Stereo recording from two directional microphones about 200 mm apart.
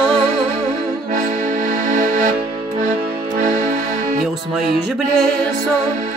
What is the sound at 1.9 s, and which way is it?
Music, 40° right (ahead or behind).